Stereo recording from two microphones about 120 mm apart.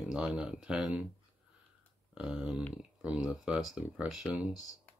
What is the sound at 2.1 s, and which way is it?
Speech, 5° right (ahead or behind).